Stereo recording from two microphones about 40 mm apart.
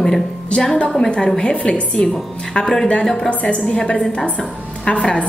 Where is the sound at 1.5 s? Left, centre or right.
Left.